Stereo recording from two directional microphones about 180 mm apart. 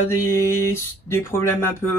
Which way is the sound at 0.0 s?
15° left (ahead or behind).